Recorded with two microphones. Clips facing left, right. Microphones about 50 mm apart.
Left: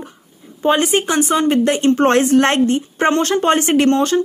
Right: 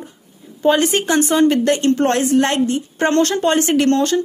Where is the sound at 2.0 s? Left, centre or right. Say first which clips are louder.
Left 5 dB; left.